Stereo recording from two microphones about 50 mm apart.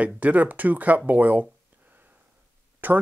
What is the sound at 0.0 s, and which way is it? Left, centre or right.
Speech, right.